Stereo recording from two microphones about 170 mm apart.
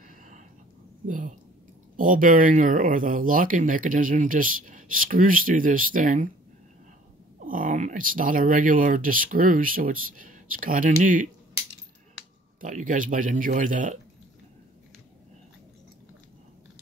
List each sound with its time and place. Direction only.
1.0 s a woman's voice: 50° right (ahead or behind)
7.4 s speech: 50° right (ahead or behind)
12.5 s speech: 50° right (ahead or behind)